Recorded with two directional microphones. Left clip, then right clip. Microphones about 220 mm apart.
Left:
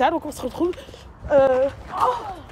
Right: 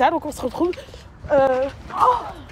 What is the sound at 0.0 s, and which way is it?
A woman's voice, 10° left (ahead or behind).